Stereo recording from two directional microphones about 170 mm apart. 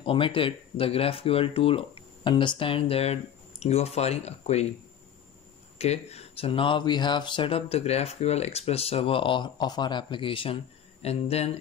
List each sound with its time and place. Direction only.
0.0 s speech: 30° left (ahead or behind)
5.8 s speech: 40° left (ahead or behind)